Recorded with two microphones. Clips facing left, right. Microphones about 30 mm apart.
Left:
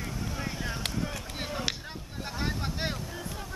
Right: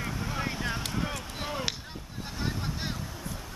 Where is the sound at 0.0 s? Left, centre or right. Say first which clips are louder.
Right 3 dB; right.